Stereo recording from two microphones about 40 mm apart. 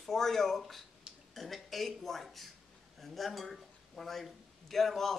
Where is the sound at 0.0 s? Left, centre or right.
Centre.